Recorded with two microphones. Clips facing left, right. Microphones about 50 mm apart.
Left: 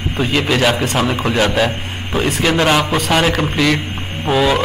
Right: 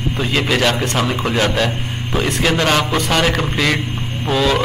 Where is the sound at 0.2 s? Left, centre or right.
Centre.